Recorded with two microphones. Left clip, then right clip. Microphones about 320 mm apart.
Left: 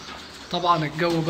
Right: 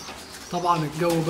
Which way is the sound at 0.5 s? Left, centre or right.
Centre.